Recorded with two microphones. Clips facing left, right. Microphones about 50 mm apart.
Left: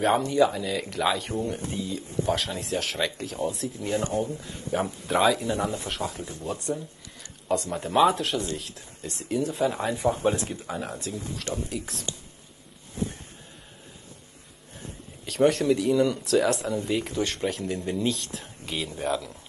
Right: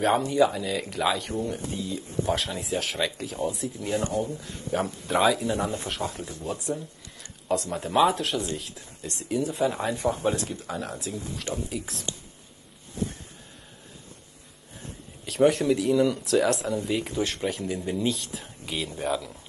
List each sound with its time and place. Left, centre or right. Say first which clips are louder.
0.0 s speech: even; centre
10.4 s speech: even; centre
11.5 s speech: even; centre
14.8 s speech: left 1 dB; centre